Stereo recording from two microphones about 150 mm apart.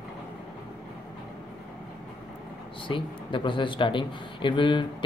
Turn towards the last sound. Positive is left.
turn(degrees=35)  # may be behind; listen again after turning